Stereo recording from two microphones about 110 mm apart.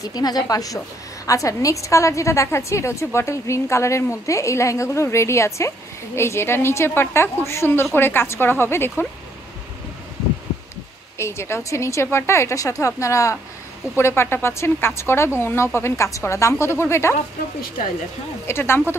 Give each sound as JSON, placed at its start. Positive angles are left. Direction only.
{"t": 0.0, "sound": "a woman's voice", "side_deg": 35}
{"t": 11.1, "sound": "a woman's voice", "side_deg": 25}
{"t": 18.5, "sound": "a woman's voice", "side_deg": 20}